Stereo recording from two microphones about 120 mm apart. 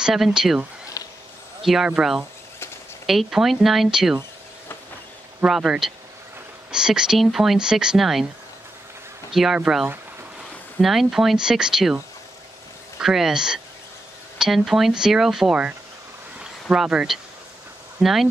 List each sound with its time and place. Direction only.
0.0 s speech: 5° right (ahead or behind)
1.0 s a sound: 30° left (ahead or behind)
1.6 s speech: centre (ahead or behind)
5.4 s speech: 5° right (ahead or behind)
9.3 s speech: 5° right (ahead or behind)
13.0 s speech: 5° right (ahead or behind)
16.3 s a sound: 5° right (ahead or behind)
18.0 s speech: centre (ahead or behind)